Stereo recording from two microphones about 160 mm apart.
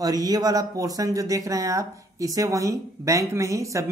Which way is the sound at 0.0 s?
25° right (ahead or behind).